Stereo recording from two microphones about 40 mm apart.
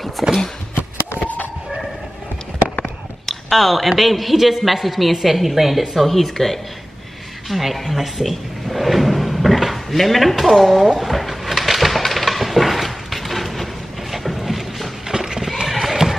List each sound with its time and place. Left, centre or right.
0.2 s a man's voice: centre
1.2 s chicken: left
3.3 s a man's voice: centre
7.4 s drawer open or close: centre
10.3 s a man's voice: centre
10.9 s a sound: centre
15.0 s horse: centre